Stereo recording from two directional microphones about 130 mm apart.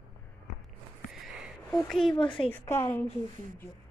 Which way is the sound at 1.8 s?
Centre (ahead or behind).